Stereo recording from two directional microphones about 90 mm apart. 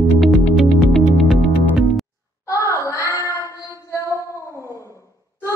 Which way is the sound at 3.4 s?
35° left (ahead or behind).